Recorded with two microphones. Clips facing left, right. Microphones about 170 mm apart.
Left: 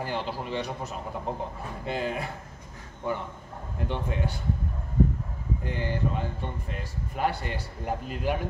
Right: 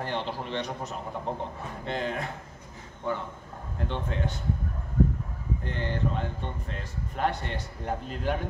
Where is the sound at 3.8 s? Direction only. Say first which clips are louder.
Left 1 dB; 10° left (ahead or behind).